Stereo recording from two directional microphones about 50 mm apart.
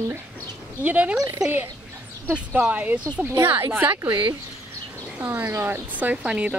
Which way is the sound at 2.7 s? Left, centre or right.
Right.